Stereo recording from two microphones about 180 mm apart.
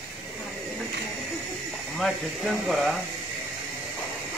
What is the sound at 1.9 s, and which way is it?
Speech, centre (ahead or behind).